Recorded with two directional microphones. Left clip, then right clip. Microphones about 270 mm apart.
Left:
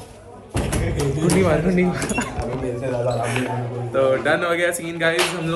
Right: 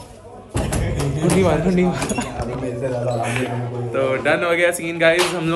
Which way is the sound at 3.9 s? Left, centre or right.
Centre.